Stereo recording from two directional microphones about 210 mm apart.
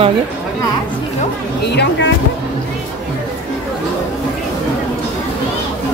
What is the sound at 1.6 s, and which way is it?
Speech, 50° left (ahead or behind).